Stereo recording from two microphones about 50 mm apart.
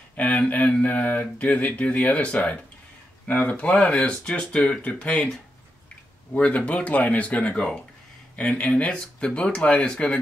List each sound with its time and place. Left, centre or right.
0.1 s speech: left
5.1 s speech: centre
6.3 s speech: left